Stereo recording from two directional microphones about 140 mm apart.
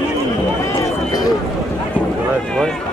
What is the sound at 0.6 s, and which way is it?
Run, 25° left (ahead or behind).